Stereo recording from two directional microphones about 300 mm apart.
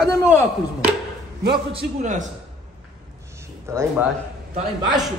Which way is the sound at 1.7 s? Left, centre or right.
Right.